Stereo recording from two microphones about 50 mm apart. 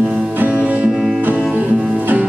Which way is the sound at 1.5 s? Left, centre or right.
Right.